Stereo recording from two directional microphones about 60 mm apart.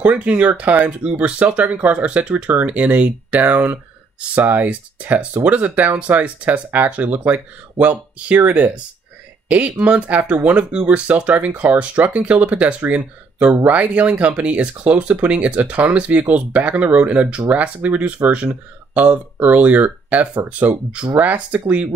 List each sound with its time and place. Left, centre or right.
0.0 s speech: right